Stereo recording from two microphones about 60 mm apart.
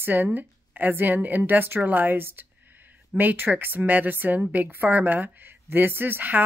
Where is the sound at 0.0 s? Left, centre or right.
Right.